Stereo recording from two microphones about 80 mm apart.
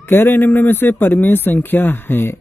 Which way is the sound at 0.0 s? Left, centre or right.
Left.